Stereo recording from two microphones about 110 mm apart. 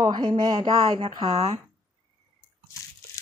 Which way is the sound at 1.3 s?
75° right (ahead or behind).